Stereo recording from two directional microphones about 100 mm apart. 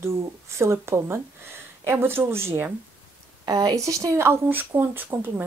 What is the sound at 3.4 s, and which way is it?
Speech, 40° right (ahead or behind).